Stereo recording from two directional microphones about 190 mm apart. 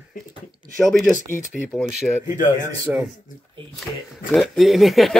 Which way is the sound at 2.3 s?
40° left (ahead or behind).